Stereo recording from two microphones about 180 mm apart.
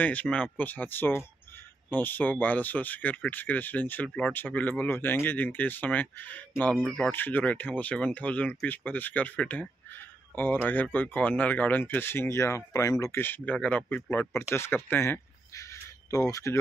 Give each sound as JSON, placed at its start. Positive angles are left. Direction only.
{"t": 0.0, "sound": "speech", "side_deg": 10}
{"t": 7.1, "sound": "speech", "side_deg": 10}